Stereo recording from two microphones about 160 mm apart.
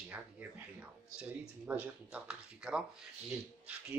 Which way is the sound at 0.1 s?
10° right (ahead or behind).